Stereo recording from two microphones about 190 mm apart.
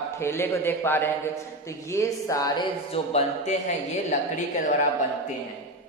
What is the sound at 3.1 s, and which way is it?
Speech, 35° left (ahead or behind).